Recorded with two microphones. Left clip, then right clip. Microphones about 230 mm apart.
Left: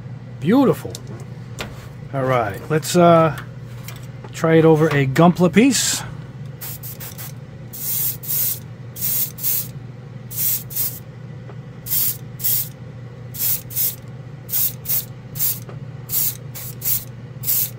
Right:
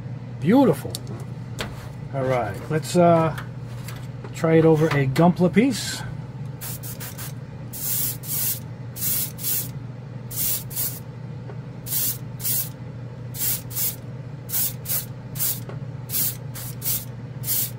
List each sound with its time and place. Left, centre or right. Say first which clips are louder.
0.4 s speech: left 2 dB; centre
2.1 s speech: left 4 dB; left
4.4 s speech: left 4 dB; left